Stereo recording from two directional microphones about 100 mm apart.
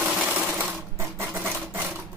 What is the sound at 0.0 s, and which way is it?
Sewing machine, 10° right (ahead or behind).